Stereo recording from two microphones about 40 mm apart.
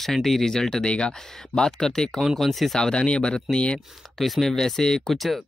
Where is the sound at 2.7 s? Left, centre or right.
Left.